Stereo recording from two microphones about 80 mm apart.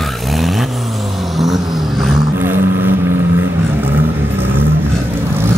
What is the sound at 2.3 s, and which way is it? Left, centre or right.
Vehicle, right.